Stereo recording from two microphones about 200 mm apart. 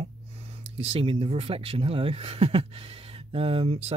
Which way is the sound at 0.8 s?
30° right (ahead or behind).